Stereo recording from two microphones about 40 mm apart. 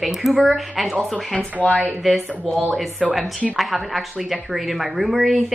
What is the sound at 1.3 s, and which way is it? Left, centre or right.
Speech, left.